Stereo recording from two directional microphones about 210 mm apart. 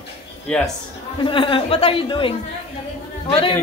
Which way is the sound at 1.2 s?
25° left (ahead or behind).